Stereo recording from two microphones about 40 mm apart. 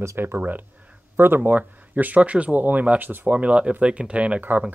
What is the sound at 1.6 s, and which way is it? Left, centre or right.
Speech, right.